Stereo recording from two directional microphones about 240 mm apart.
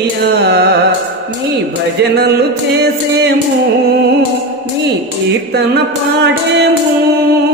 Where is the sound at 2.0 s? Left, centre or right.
Right.